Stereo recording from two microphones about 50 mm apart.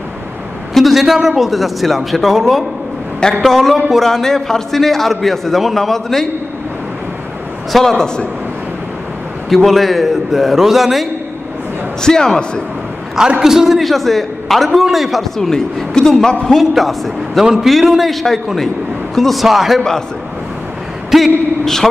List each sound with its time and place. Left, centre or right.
0.7 s a man's voice: centre
3.2 s a man's voice: centre
3.4 s a man's voice: centre
7.7 s a man's voice: centre
9.5 s a man's voice: centre
12.0 s a man's voice: centre
13.4 s a man's voice: centre
21.1 s speech: centre